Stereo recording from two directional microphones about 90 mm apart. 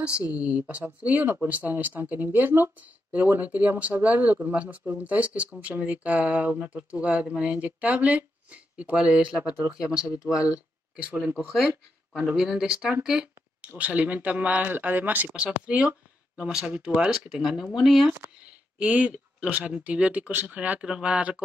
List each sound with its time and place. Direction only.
0.0 s speech: 10° right (ahead or behind)
11.3 s speech: centre (ahead or behind)
13.0 s a sound: 10° right (ahead or behind)
13.7 s speech: 15° right (ahead or behind)
18.4 s speech: 15° right (ahead or behind)